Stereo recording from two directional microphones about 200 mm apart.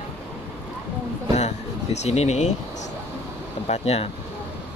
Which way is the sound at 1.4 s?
35° left (ahead or behind).